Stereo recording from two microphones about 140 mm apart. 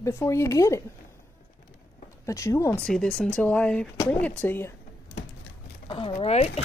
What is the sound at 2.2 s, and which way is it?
Speech, 20° left (ahead or behind).